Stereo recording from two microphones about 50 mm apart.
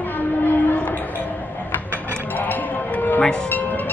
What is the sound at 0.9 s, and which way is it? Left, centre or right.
Music, left.